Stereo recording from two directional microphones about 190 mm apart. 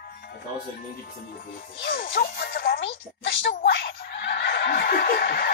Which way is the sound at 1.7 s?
60° left (ahead or behind).